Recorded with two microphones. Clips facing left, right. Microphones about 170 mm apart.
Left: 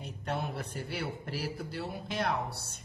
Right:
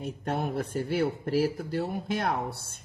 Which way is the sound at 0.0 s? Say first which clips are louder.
Right 5 dB; 45° right (ahead or behind).